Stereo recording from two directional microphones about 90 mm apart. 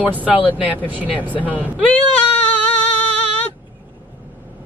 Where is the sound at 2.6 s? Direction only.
15° left (ahead or behind).